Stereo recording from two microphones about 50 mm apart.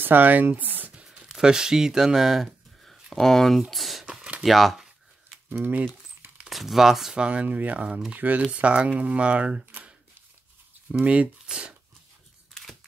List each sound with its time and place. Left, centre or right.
0.0 s a sound: right
1.3 s speech: centre
3.1 s speech: centre
4.0 s a sound: centre
4.4 s speech: centre
6.5 s speech: centre
7.2 s speech: right
11.0 s speech: right
11.4 s a sound: right